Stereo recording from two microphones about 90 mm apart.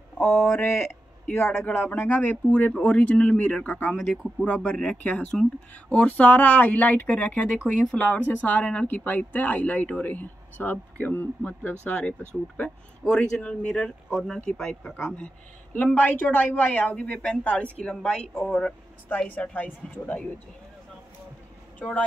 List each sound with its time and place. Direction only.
0.2 s speech: 25° left (ahead or behind)
3.9 s speech: 5° right (ahead or behind)
4.6 s speech: 10° left (ahead or behind)
15.1 s speech: 15° left (ahead or behind)
21.7 s speech: 15° left (ahead or behind)